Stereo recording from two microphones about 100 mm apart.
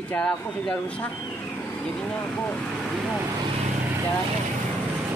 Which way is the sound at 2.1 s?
15° left (ahead or behind).